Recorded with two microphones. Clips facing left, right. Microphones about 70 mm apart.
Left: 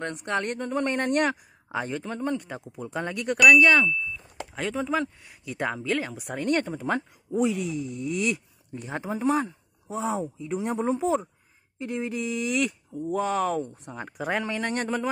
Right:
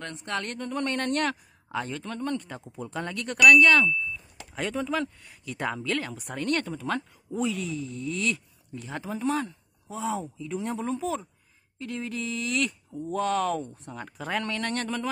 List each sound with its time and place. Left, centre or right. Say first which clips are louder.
0.0 s speech: left 4 dB; left
0.7 s speech: left 1 dB; centre